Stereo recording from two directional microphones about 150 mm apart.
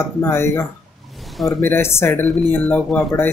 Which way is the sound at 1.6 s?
15° left (ahead or behind).